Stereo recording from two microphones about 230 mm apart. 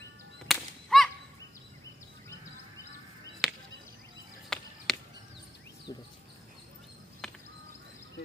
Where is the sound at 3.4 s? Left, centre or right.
Centre.